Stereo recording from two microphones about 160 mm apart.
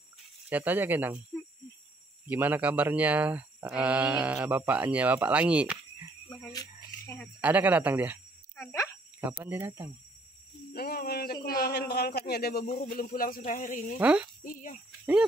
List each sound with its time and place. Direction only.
0.5 s speech: 10° right (ahead or behind)
2.2 s speech: 10° right (ahead or behind)
6.2 s a sound: 25° left (ahead or behind)
7.3 s speech: 10° right (ahead or behind)
9.4 s speech: 15° right (ahead or behind)
10.7 s a sound: 75° left (ahead or behind)
11.6 s a man's voice: 80° left; by 13.9 s 55° left (ahead or behind)
13.9 s speech: 10° right (ahead or behind)
14.4 s a sound: 55° left (ahead or behind)